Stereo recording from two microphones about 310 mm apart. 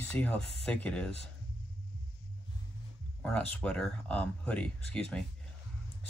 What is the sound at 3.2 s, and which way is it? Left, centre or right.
Speech, centre.